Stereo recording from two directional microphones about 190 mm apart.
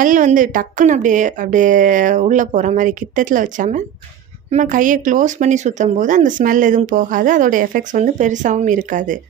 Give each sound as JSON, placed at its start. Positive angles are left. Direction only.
{"t": 0.0, "sound": "speech", "side_deg": -45}